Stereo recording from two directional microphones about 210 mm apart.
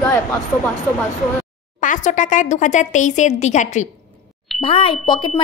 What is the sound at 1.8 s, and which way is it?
A woman's voice, 35° left (ahead or behind).